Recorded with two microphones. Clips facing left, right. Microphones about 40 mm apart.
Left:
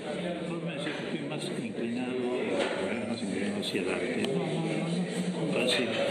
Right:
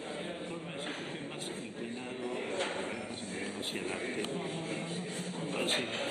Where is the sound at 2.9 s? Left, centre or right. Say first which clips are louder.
Left 7 dB; left.